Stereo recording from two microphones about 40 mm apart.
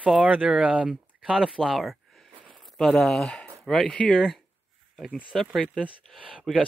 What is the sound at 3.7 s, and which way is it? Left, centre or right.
Speech, centre.